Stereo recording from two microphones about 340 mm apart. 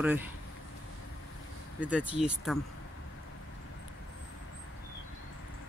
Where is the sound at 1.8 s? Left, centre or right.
Centre.